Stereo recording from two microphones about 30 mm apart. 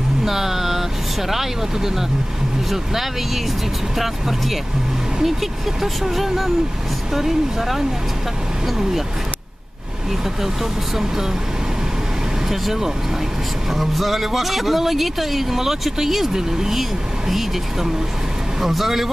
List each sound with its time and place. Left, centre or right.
0.2 s vehicle: centre
2.7 s speech: centre
12.4 s speech: centre
18.6 s speech: centre